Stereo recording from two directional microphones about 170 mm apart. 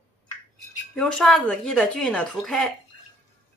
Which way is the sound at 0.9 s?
5° left (ahead or behind).